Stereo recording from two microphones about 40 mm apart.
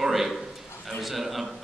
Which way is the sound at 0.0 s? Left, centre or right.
Centre.